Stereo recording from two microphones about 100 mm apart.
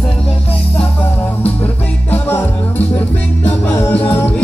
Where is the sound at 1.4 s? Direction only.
15° left (ahead or behind).